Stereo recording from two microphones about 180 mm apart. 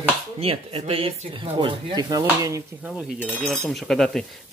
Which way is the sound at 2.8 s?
5° right (ahead or behind).